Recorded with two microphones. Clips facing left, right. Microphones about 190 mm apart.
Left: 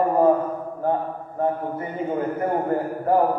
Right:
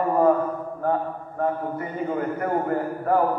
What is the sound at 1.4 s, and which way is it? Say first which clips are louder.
A man's voice: left 1 dB; 25° left (ahead or behind).